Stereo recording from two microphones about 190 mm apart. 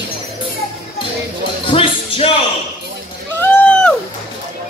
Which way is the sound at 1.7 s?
30° left (ahead or behind).